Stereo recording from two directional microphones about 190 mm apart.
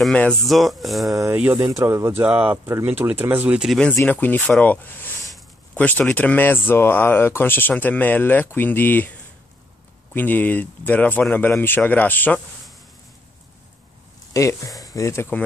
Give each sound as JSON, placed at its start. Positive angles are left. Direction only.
{"t": 0.0, "sound": "speech", "side_deg": 5}
{"t": 1.1, "sound": "speech", "side_deg": -10}
{"t": 10.1, "sound": "speech", "side_deg": 10}
{"t": 14.3, "sound": "speech", "side_deg": 15}